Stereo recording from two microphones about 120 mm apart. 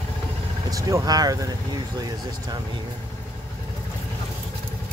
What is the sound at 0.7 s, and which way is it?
Speech, 30° right (ahead or behind).